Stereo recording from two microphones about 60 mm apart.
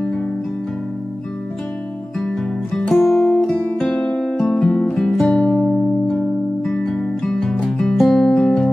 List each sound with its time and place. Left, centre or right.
2.1 s music: centre
3.9 s music: centre
5.3 s music: centre